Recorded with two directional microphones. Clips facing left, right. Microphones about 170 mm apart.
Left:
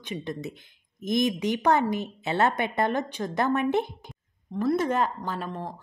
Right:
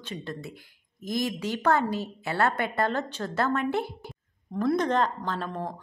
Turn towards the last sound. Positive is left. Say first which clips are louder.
# right 1 dB
turn(degrees=10)  # may be behind; listen again after turning